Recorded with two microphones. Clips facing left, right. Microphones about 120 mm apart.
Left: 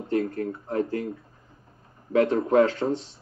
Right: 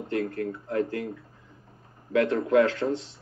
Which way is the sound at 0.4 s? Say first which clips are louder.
Left 1 dB; 30° left (ahead or behind).